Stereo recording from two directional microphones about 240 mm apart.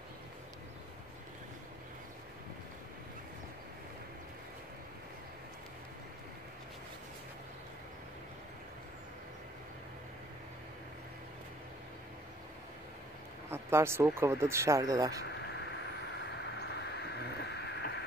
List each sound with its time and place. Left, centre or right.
13.5 s speech: centre
15.2 s a sound: left
16.3 s vehicle: left